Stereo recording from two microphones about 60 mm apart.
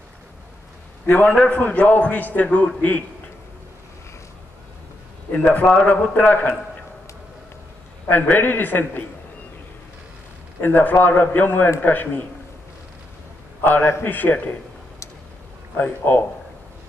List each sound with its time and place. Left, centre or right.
1.0 s a man's voice: left
5.3 s a man's voice: left
8.1 s a man's voice: left
10.6 s a man's voice: left
13.7 s a man's voice: left
15.8 s a man's voice: left